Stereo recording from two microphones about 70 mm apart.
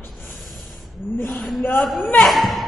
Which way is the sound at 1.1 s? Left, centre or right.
Left.